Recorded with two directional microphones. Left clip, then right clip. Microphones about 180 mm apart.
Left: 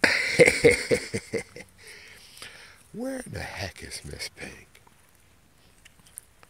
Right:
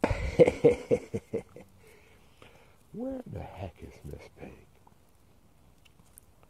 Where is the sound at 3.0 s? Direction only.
25° left (ahead or behind).